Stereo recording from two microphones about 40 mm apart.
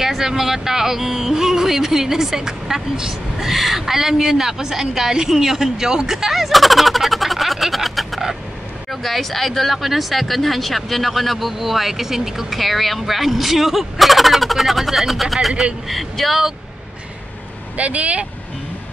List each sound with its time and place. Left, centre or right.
0.0 s speech: centre
17.7 s speech: right